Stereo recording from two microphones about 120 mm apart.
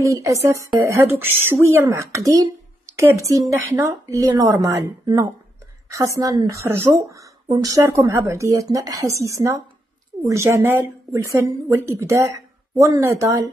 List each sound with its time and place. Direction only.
0.0 s a woman's voice: 25° right (ahead or behind)